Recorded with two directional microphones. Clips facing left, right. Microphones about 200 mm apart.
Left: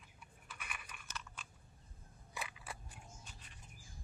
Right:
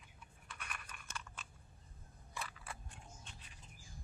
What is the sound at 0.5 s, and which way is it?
Crunch, 5° left (ahead or behind).